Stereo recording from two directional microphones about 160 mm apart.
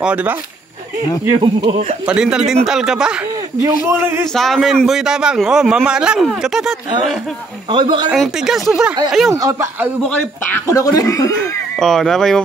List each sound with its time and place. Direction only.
0.0 s a man's voice: 10° right (ahead or behind)
1.4 s speech: 30° right (ahead or behind)
2.0 s a man's voice: 5° right (ahead or behind)
3.6 s a man's voice: 15° right (ahead or behind)
4.3 s a man's voice: centre (ahead or behind)
7.7 s speech: 30° right (ahead or behind)
8.1 s a man's voice: centre (ahead or behind)
9.3 s speech: 20° right (ahead or behind)
10.7 s speech: 20° left (ahead or behind)
11.8 s a man's voice: centre (ahead or behind)